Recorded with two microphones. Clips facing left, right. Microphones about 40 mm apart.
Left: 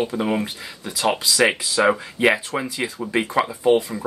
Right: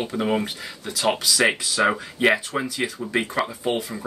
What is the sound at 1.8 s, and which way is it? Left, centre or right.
Speech, centre.